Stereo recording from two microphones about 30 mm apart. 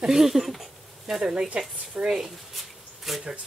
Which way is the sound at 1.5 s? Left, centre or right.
Right.